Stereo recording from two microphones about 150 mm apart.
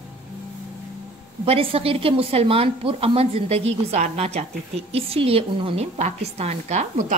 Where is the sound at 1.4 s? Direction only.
40° right (ahead or behind).